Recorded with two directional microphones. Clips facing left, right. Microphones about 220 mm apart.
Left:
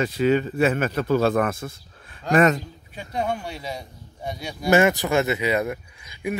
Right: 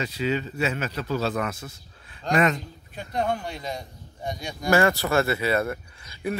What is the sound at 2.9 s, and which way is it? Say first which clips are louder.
Speech: even; 10° left (ahead or behind).